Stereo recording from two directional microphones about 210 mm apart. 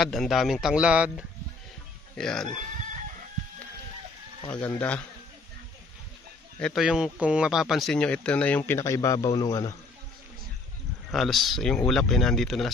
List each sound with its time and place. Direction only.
0.0 s speech: centre (ahead or behind)
4.5 s speech: 5° left (ahead or behind)
6.6 s speech: centre (ahead or behind); by 9.8 s 15° left (ahead or behind)
11.1 s speech: centre (ahead or behind)